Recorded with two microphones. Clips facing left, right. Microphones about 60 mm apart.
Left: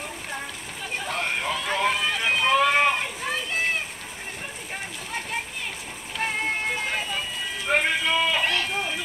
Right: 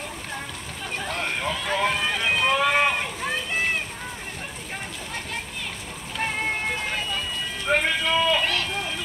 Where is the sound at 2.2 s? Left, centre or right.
Centre.